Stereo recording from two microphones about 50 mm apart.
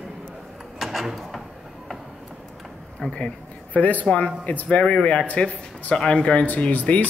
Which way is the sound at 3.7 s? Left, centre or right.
Left.